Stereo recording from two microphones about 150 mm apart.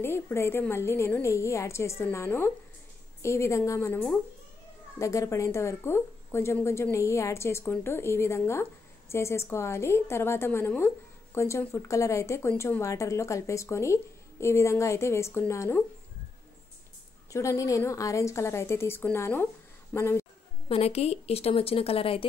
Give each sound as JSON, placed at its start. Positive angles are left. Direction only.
{"t": 0.0, "sound": "a woman's voice", "side_deg": 15}
{"t": 17.3, "sound": "speech", "side_deg": 20}
{"t": 20.6, "sound": "speech", "side_deg": 40}